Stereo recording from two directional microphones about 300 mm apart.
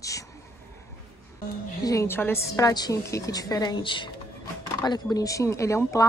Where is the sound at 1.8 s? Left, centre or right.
Centre.